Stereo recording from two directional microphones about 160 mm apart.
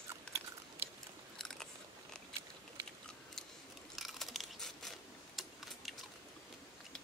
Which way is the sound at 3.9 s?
Centre (ahead or behind).